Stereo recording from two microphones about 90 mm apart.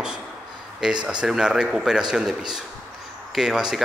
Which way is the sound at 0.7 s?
5° right (ahead or behind).